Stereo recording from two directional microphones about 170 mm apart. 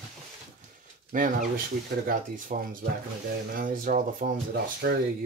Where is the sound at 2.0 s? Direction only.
50° right (ahead or behind).